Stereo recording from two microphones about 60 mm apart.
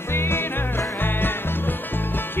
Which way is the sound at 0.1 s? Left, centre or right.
Left.